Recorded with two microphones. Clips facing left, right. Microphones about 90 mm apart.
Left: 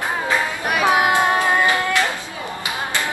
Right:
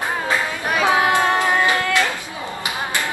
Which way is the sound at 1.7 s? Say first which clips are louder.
Even; 20° left (ahead or behind).